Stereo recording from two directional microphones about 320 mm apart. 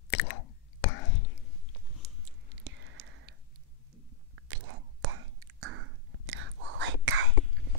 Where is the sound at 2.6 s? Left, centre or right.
Right.